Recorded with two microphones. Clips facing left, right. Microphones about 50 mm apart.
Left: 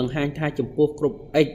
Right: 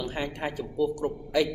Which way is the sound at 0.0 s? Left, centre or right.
Left.